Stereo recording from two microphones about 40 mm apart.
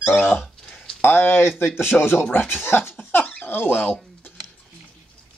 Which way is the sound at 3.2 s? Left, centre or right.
Left.